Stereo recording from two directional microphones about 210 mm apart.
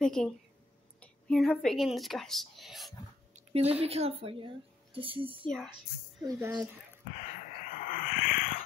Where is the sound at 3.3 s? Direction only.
30° right (ahead or behind).